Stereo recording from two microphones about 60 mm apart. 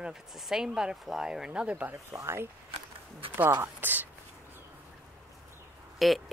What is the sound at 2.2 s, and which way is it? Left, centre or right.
Speech, right.